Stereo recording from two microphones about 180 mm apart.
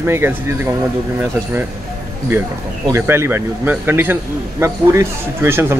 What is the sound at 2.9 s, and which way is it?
Speech, 15° right (ahead or behind).